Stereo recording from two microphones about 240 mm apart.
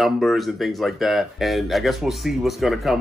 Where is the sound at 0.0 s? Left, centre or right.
Centre.